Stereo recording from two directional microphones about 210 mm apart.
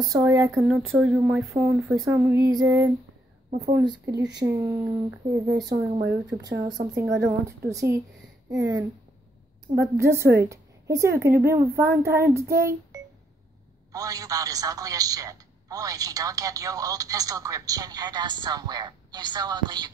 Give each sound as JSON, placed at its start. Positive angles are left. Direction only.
{"t": 0.0, "sound": "speech", "side_deg": -15}
{"t": 2.0, "sound": "a man's voice", "side_deg": -10}
{"t": 11.8, "sound": "speech", "side_deg": -50}
{"t": 12.1, "sound": "a man's voice", "side_deg": -15}
{"t": 12.9, "sound": "a sound", "side_deg": -15}
{"t": 13.9, "sound": "a man's voice", "side_deg": -15}